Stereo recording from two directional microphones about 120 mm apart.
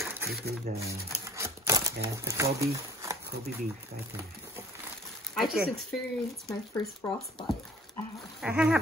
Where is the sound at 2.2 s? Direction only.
25° right (ahead or behind).